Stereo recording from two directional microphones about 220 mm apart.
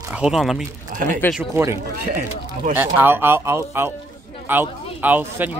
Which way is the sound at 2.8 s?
10° right (ahead or behind).